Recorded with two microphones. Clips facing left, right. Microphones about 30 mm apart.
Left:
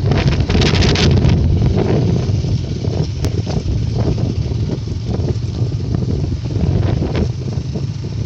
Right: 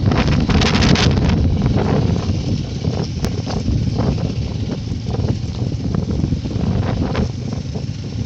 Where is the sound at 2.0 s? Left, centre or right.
Right.